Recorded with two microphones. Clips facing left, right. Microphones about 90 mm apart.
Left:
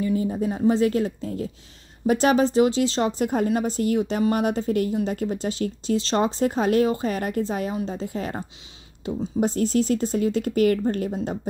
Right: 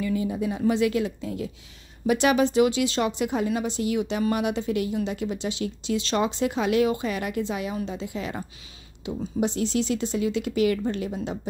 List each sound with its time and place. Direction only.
0.0 s speech: 35° left (ahead or behind)